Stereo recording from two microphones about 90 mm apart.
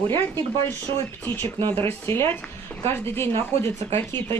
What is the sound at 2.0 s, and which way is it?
Speech, 25° left (ahead or behind).